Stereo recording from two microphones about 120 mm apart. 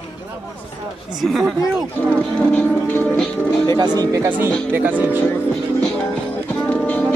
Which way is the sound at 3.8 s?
30° right (ahead or behind).